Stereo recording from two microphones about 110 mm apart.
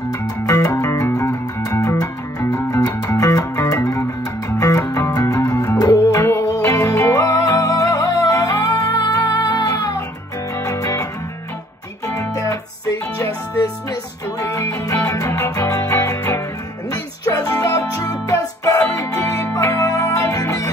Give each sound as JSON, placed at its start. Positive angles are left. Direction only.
{"t": 0.7, "sound": "music", "side_deg": 30}
{"t": 12.2, "sound": "music", "side_deg": 30}